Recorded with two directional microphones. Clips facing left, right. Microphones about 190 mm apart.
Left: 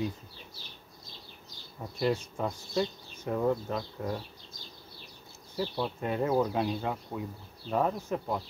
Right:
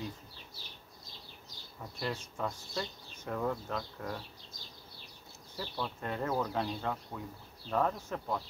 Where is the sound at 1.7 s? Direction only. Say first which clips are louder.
Left 9 dB; 20° left (ahead or behind).